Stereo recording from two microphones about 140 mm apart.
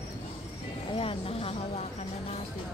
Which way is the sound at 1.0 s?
40° left (ahead or behind).